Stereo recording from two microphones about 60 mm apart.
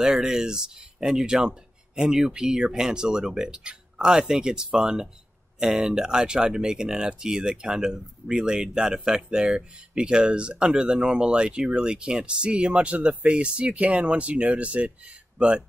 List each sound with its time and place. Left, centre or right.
0.0 s speech: centre